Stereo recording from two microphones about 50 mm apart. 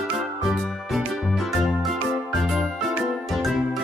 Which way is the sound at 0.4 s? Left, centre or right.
Centre.